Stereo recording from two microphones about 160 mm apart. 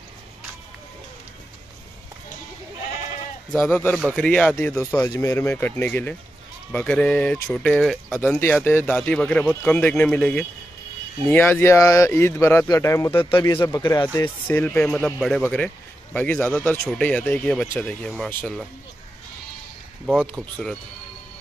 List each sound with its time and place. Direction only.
3.9 s speech: 5° left (ahead or behind); by 13.1 s 20° left (ahead or behind)
13.1 s speech: 30° left (ahead or behind)
14.2 s speech: 10° left (ahead or behind)
15.0 s speech: centre (ahead or behind)
20.1 s speech: centre (ahead or behind)